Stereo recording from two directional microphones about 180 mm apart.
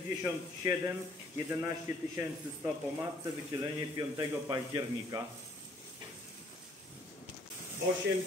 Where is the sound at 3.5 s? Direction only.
25° right (ahead or behind).